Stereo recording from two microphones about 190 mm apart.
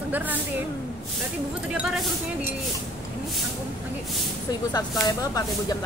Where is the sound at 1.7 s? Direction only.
5° right (ahead or behind).